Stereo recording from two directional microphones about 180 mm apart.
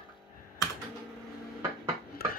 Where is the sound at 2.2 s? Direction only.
55° left (ahead or behind).